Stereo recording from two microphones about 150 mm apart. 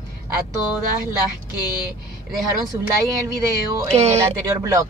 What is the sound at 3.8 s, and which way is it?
Speech, 45° right (ahead or behind).